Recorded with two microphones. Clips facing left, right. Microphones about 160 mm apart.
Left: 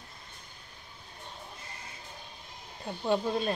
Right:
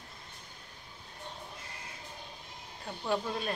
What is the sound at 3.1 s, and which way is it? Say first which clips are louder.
Speech: left 4 dB; 25° left (ahead or behind).